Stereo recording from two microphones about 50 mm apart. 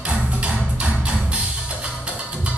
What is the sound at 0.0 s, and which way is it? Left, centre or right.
Music, centre.